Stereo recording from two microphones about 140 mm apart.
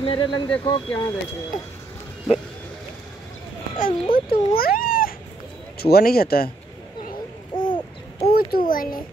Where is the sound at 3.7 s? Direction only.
85° left.